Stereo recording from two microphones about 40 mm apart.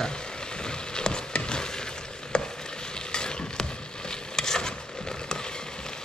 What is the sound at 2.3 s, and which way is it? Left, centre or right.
Frying, left.